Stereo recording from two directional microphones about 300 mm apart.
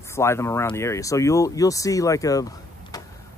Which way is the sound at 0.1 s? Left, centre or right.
Centre.